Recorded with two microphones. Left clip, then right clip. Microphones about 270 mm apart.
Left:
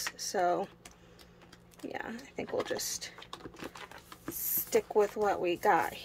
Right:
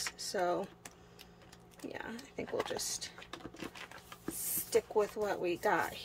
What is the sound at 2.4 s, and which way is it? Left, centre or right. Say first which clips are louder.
Speech: left 3 dB; centre.